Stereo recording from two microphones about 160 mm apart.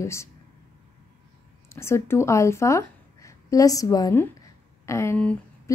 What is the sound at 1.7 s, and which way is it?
A woman's voice, 15° left (ahead or behind).